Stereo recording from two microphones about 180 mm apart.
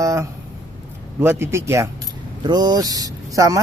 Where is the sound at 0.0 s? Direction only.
15° right (ahead or behind).